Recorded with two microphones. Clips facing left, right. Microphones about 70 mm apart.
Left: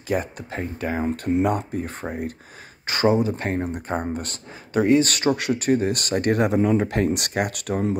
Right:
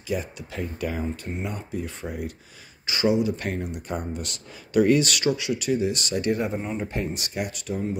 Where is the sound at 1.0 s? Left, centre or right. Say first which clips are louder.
Left 10 dB; left.